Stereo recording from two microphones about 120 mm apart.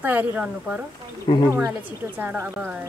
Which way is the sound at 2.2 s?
15° right (ahead or behind).